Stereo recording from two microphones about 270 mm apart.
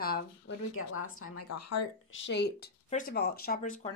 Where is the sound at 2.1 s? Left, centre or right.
Left.